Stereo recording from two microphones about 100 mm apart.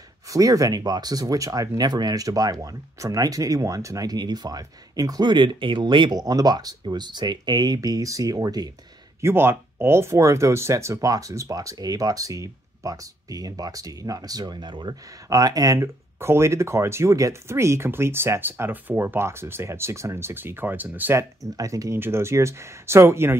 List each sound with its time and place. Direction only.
0.3 s speech: 35° right (ahead or behind); by 6.1 s 50° right (ahead or behind)
6.1 s speech: 40° right (ahead or behind)
9.2 s speech: 25° right (ahead or behind); by 15.0 s 50° right (ahead or behind)
15.2 s speech: 40° right (ahead or behind); by 21.2 s 20° right (ahead or behind)
21.2 s speech: 35° right (ahead or behind)